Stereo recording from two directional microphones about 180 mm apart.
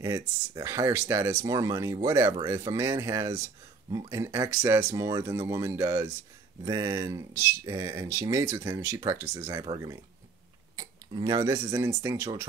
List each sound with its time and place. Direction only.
0.0 s speech: 20° right (ahead or behind)